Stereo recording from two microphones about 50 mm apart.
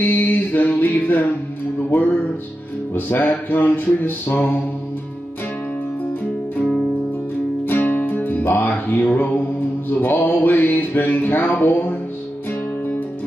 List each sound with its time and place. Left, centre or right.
0.0 s music: left
3.1 s music: left
7.6 s music: left